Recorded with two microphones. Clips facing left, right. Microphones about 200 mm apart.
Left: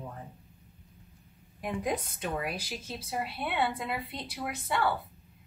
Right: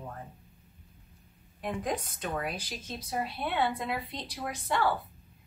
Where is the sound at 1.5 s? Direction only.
10° left (ahead or behind).